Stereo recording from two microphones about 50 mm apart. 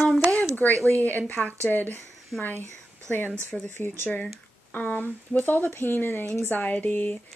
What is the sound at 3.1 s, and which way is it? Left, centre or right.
Speech, left.